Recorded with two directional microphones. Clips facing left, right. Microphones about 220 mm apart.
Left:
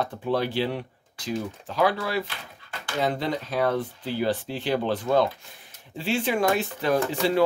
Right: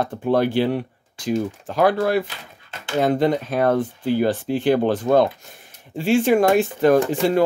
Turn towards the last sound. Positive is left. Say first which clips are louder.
# right 6 dB
turn(degrees=-50)  # may be behind; listen again after turning